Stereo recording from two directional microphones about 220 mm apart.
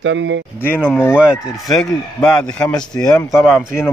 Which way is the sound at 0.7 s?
5° left (ahead or behind).